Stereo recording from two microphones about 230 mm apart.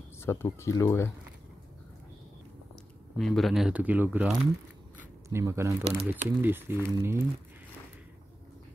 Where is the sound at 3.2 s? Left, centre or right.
Centre.